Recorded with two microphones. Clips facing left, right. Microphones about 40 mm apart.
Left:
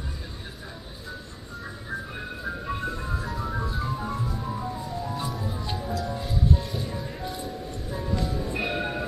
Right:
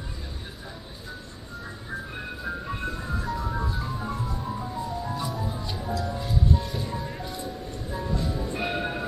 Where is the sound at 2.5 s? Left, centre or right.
Centre.